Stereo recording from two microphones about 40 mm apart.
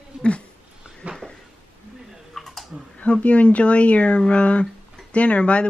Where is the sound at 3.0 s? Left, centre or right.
Left.